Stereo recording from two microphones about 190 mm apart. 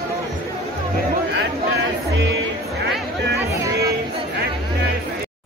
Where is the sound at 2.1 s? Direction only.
70° right (ahead or behind).